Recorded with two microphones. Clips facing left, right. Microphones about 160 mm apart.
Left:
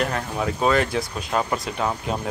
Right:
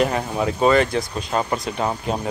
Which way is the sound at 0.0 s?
5° right (ahead or behind).